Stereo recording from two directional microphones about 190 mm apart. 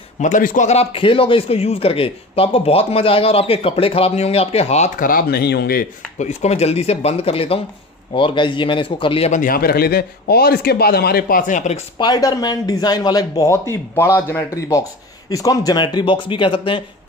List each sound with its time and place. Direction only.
0.2 s a man's voice: 45° left (ahead or behind)
6.1 s a man's voice: 35° left (ahead or behind)
12.0 s speech: 20° left (ahead or behind)